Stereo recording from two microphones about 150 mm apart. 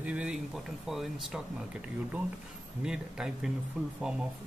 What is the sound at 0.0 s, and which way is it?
Speech, 10° right (ahead or behind).